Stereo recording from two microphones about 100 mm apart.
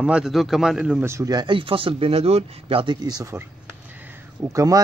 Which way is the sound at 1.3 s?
50° right (ahead or behind).